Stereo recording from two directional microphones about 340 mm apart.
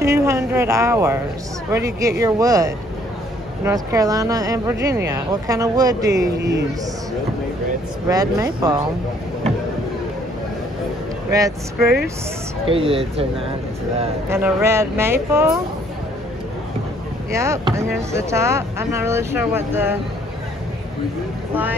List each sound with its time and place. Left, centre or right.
0.0 s speech: centre
8.1 s speech: centre
11.2 s speech: centre
17.3 s speech: centre